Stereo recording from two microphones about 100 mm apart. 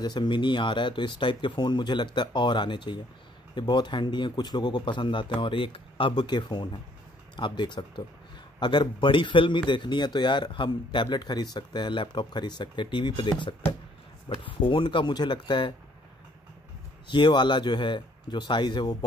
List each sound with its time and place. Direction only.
0.0 s a man's voice: 45° left (ahead or behind)
17.1 s a man's voice: 50° left (ahead or behind)